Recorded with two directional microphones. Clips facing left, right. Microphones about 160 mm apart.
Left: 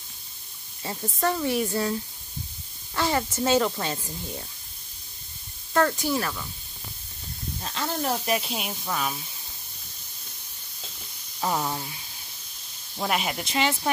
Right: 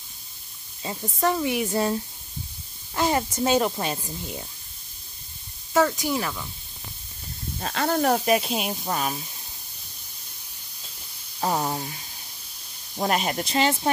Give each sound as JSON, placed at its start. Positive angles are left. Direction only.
{"t": 1.0, "sound": "speech", "side_deg": -15}
{"t": 1.7, "sound": "a sound", "side_deg": -30}
{"t": 3.0, "sound": "speech", "side_deg": -15}
{"t": 5.7, "sound": "speech", "side_deg": -5}
{"t": 7.6, "sound": "speech", "side_deg": -65}
{"t": 8.5, "sound": "speech", "side_deg": -40}
{"t": 11.5, "sound": "a sound", "side_deg": -20}
{"t": 13.1, "sound": "speech", "side_deg": -40}